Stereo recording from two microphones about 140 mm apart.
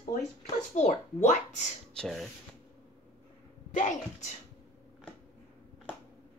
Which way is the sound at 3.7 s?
60° left (ahead or behind).